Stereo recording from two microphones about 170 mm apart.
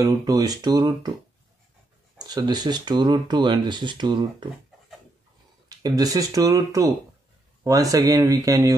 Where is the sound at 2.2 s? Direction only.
25° right (ahead or behind).